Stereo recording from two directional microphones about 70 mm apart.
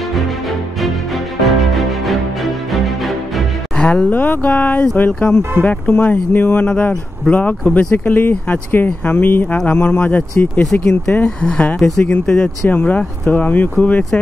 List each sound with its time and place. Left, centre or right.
0.1 s music: centre
3.7 s speech: centre